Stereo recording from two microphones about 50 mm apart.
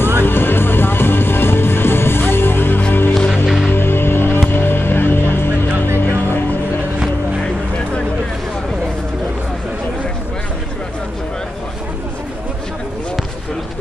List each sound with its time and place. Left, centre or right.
0.2 s music: left
3.4 s music: centre
3.7 s music: left